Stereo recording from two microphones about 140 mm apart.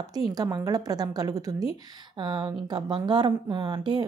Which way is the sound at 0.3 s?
25° right (ahead or behind).